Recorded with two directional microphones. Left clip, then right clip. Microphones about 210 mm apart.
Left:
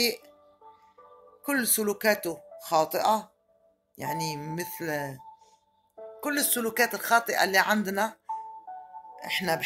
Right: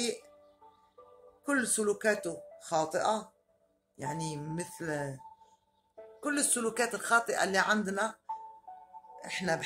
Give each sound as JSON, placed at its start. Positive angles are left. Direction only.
{"t": 1.4, "sound": "speech", "side_deg": 15}
{"t": 6.2, "sound": "speech", "side_deg": 10}